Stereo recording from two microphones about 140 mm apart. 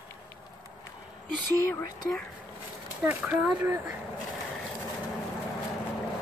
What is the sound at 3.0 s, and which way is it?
Speech, 10° right (ahead or behind).